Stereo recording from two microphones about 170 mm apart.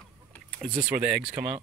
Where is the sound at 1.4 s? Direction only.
5° right (ahead or behind).